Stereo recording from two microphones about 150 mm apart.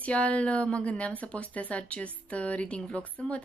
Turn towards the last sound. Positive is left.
turn(degrees=10)  # may be behind; listen again after turning